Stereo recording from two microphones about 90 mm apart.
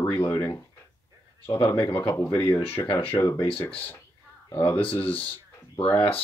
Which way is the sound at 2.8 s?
45° left (ahead or behind).